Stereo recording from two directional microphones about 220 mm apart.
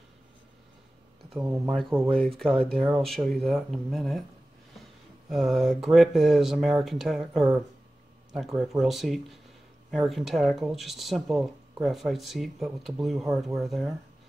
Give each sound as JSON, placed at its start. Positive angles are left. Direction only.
{"t": 1.7, "sound": "speech", "side_deg": 0}
{"t": 5.3, "sound": "speech", "side_deg": 0}